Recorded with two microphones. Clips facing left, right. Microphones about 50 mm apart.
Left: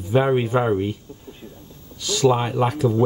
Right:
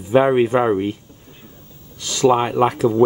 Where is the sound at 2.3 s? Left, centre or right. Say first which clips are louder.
Right 5 dB; right.